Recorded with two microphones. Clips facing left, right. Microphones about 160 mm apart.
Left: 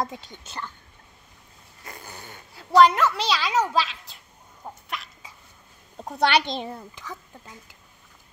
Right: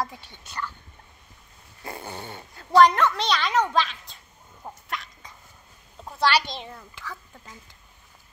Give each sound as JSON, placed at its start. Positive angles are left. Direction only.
{"t": 0.0, "sound": "speech", "side_deg": 20}
{"t": 1.9, "sound": "dog", "side_deg": -25}
{"t": 2.5, "sound": "a child's voice", "side_deg": 5}
{"t": 4.8, "sound": "a sound", "side_deg": 0}
{"t": 5.9, "sound": "a woman's voice", "side_deg": 45}
{"t": 6.7, "sound": "speech", "side_deg": 25}